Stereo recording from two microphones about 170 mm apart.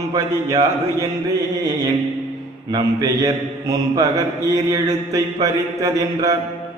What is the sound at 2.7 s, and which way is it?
Speech, 20° right (ahead or behind).